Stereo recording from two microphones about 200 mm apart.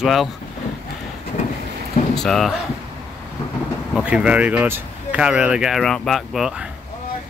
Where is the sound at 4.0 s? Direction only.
5° right (ahead or behind).